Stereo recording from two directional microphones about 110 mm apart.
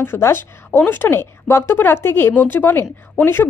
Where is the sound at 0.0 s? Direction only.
20° left (ahead or behind).